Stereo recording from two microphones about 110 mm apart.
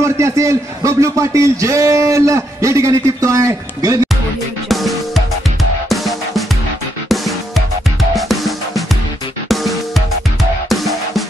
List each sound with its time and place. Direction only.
0.0 s a man's voice: 25° right (ahead or behind)
4.6 s music: centre (ahead or behind)